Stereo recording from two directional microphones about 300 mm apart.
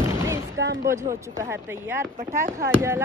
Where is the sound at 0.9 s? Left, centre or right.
Centre.